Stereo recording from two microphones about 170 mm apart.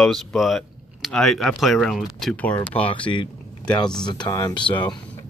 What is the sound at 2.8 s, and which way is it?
Speech, 30° left (ahead or behind).